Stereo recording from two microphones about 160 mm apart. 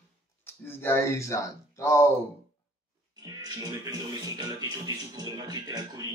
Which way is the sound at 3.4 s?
20° right (ahead or behind).